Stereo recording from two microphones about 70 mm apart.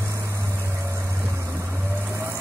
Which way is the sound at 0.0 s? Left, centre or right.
Right.